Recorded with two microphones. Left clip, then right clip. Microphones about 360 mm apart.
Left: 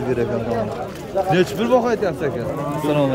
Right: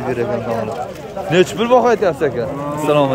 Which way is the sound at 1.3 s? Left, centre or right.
Centre.